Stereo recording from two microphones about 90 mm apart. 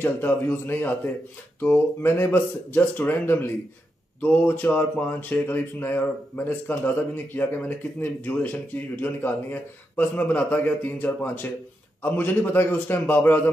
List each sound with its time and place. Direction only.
0.0 s speech: 25° left (ahead or behind)